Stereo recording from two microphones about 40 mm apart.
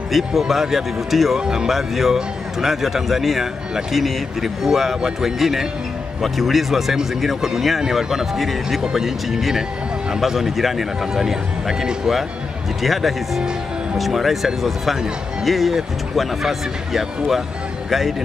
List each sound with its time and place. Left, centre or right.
0.1 s a man's voice: centre
1.4 s speech: right
1.7 s a man's voice: centre